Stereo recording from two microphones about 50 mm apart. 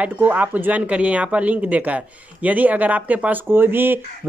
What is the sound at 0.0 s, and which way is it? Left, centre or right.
Speech, right.